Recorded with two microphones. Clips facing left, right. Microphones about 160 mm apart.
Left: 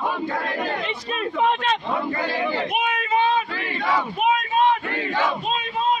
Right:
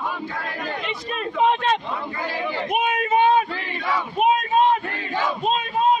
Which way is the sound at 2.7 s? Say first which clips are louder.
Right 2 dB; 45° right (ahead or behind).